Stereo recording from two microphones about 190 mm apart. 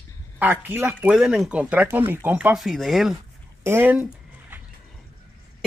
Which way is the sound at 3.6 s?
10° right (ahead or behind).